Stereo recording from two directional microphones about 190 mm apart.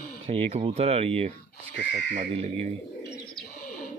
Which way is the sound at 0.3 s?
30° right (ahead or behind).